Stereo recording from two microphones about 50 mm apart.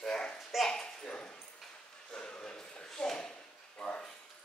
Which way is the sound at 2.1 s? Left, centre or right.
Centre.